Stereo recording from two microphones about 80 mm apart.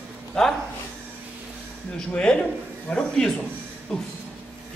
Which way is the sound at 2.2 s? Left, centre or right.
Centre.